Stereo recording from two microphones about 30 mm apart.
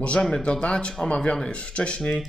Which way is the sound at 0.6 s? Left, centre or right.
Left.